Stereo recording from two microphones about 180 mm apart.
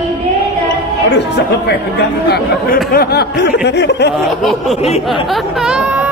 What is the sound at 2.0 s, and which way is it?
Speech, 65° left (ahead or behind).